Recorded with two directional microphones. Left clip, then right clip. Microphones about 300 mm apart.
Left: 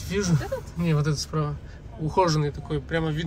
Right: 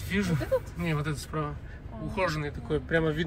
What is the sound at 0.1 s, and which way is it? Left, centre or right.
A man's voice, centre.